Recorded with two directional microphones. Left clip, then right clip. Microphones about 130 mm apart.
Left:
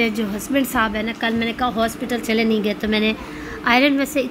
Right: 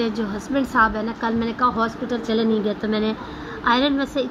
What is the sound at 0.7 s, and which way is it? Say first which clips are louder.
Speech: right 5 dB; 35° left (ahead or behind).